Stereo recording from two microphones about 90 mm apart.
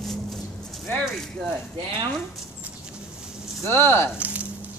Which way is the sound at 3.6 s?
25° left (ahead or behind).